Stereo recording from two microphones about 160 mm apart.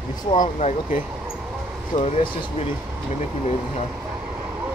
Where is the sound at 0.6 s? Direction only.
50° left (ahead or behind).